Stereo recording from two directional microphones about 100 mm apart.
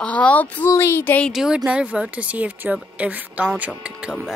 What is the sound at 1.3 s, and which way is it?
Speech, 5° right (ahead or behind).